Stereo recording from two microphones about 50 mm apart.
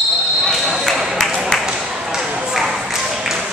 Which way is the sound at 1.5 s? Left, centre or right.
Centre.